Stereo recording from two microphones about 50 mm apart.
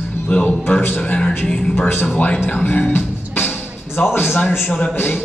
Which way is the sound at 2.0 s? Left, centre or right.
Left.